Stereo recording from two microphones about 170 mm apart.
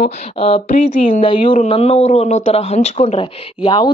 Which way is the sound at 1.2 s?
30° left (ahead or behind).